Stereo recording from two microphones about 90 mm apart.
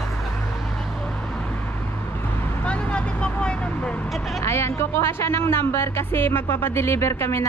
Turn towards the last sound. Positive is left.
turn(degrees=30)  # may be behind; listen again after turning